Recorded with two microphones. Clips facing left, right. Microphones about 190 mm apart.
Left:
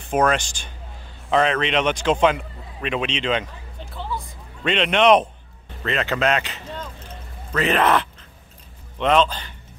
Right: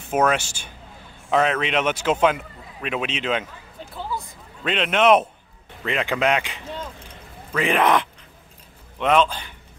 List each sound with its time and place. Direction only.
0.1 s speech: 5° right (ahead or behind)
4.6 s a man's voice: 5° right (ahead or behind)